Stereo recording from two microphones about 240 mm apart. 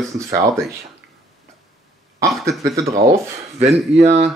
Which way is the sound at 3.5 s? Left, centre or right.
Right.